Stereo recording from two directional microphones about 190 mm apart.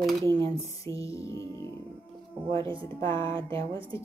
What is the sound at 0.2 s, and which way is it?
Speech, 25° right (ahead or behind).